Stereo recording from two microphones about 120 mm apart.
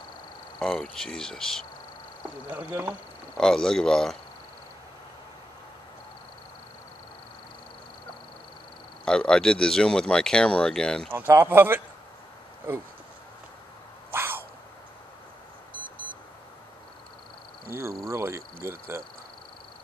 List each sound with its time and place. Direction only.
0.6 s speech: centre (ahead or behind)
2.5 s speech: 15° right (ahead or behind)
3.3 s speech: 5° left (ahead or behind)
9.0 s speech: 5° left (ahead or behind)
11.1 s speech: 20° right (ahead or behind)
14.1 s dog: 20° right (ahead or behind)
18.0 s speech: 25° right (ahead or behind)